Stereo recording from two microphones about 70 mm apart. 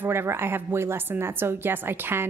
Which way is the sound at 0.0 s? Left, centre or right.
Right.